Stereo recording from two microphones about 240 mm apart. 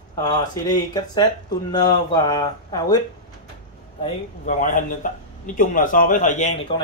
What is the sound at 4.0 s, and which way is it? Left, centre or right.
A man's voice, left.